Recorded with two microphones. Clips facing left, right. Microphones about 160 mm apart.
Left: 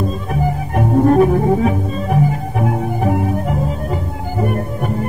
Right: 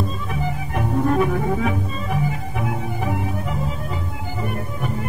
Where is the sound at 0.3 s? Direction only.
45° left (ahead or behind).